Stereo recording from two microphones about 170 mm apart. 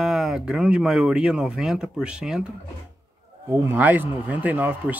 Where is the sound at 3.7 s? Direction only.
10° right (ahead or behind).